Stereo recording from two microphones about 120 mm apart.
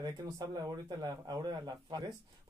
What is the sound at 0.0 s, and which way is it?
Speech, 30° right (ahead or behind).